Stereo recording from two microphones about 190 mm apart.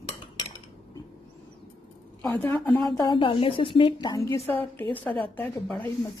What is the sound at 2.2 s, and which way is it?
A woman's voice, 10° left (ahead or behind).